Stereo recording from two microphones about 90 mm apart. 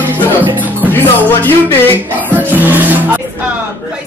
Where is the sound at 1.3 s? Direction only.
25° left (ahead or behind).